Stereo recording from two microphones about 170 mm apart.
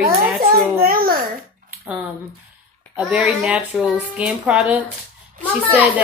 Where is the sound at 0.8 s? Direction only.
60° right (ahead or behind).